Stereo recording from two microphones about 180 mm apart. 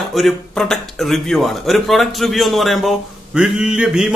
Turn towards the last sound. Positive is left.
turn(degrees=-5)  # may be behind; listen again after turning